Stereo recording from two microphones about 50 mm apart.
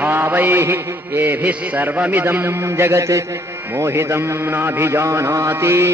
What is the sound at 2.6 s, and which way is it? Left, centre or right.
Speech, right.